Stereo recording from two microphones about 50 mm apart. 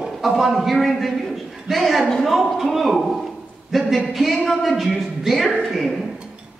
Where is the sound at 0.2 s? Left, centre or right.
Centre.